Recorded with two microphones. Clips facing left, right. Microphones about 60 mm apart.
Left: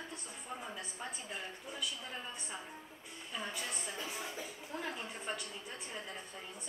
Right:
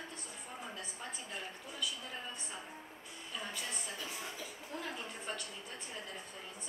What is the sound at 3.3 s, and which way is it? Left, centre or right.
Speech, centre.